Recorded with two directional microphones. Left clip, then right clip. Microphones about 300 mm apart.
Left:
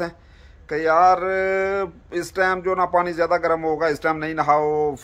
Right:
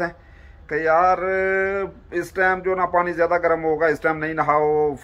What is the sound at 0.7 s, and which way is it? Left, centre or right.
Speech, centre.